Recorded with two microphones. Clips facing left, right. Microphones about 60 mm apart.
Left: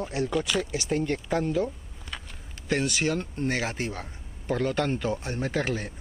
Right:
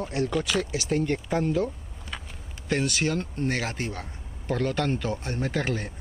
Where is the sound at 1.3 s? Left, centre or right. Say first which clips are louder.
Right 1 dB; centre.